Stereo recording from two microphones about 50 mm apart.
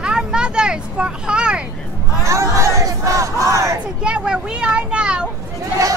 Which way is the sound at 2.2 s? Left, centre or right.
Right.